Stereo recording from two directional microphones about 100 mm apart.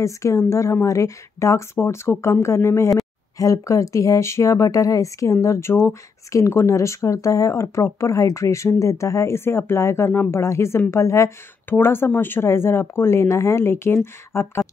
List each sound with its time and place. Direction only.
0.0 s speech: 30° left (ahead or behind)